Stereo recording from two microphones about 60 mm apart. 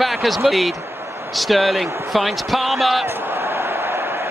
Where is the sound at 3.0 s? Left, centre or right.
Right.